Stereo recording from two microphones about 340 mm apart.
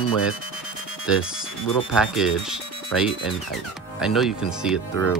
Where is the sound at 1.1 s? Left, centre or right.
Centre.